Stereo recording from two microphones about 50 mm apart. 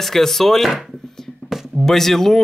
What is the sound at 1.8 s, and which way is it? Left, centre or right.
Speech, centre.